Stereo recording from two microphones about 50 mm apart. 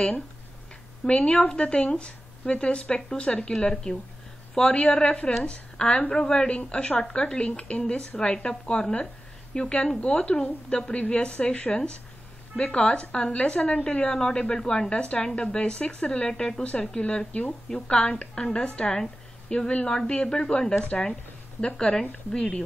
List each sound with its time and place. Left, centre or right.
1.0 s a woman's voice: centre
14.1 s a woman's voice: centre